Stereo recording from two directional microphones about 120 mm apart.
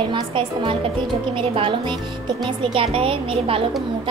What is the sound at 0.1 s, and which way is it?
A woman's voice, 45° right (ahead or behind).